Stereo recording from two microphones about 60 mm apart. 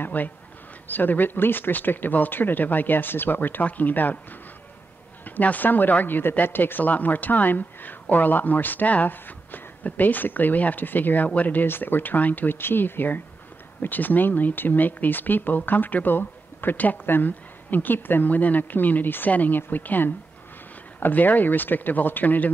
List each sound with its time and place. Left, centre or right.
0.0 s speech: left
5.2 s speech: left